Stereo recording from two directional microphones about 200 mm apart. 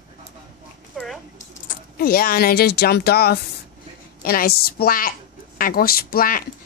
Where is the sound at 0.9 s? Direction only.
Centre (ahead or behind).